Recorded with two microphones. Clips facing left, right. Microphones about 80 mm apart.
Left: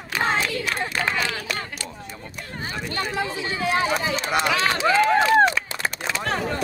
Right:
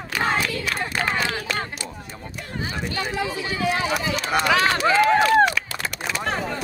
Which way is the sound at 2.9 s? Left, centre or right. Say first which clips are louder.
Left 1 dB; left.